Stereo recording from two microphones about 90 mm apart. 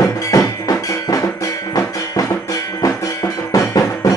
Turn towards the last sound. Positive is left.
turn(degrees=40)  # may be behind; listen again after turning